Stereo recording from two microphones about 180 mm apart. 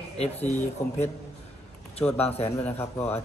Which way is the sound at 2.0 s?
15° left (ahead or behind).